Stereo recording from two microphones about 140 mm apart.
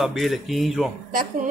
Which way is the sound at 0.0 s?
Centre (ahead or behind).